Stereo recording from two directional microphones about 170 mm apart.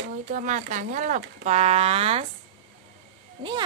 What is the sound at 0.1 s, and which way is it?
Speech, 50° right (ahead or behind).